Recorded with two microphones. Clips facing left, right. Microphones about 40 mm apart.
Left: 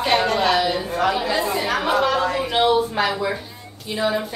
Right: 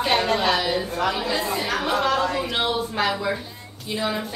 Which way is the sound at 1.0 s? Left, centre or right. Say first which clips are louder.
Left 6 dB; centre.